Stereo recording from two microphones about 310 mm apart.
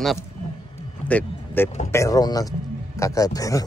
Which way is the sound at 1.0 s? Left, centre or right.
Centre.